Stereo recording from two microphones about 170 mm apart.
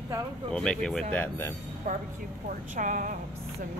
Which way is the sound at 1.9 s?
50° right (ahead or behind).